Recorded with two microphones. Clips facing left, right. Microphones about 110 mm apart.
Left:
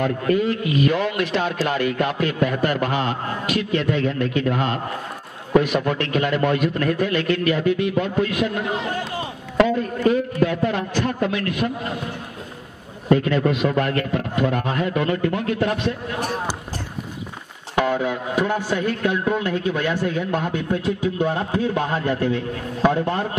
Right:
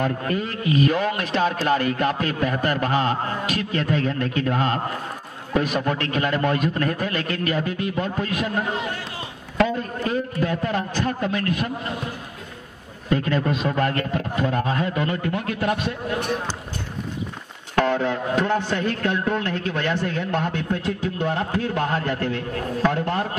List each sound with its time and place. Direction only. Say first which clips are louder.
0.0 s a man's voice: left 4 dB; 40° right (ahead or behind)
9.8 s a man's voice: left 5 dB; 35° right (ahead or behind)
13.2 s a man's voice: left 3 dB; 35° right (ahead or behind)
15.4 s a man's voice: left 2 dB; 25° left (ahead or behind)
17.7 s speech: even; 10° left (ahead or behind)